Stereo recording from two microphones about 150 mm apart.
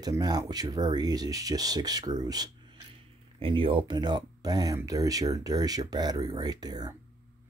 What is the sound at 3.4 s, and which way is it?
Speech, 35° right (ahead or behind).